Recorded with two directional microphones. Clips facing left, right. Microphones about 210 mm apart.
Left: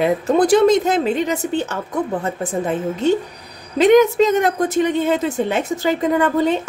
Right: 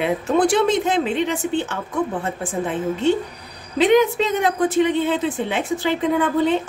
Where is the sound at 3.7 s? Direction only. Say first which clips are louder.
Left 4 dB; 45° left (ahead or behind).